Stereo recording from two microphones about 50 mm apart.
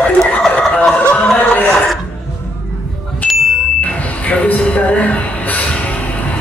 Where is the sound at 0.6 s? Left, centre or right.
Left.